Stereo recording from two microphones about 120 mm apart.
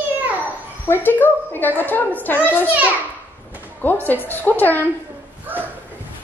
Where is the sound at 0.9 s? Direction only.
15° left (ahead or behind).